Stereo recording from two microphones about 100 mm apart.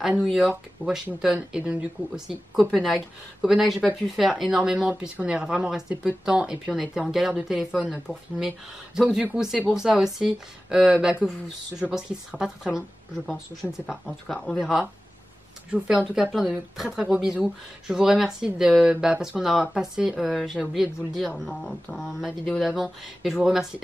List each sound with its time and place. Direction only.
0.2 s speech: 5° right (ahead or behind)
14.0 s speech: 5° left (ahead or behind)
14.6 s speech: 5° right (ahead or behind)
16.2 s speech: 5° right (ahead or behind)
21.9 s speech: centre (ahead or behind)